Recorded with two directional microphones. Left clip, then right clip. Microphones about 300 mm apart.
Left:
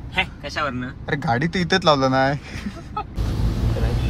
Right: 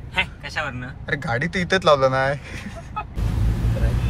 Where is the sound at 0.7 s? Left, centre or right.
Centre.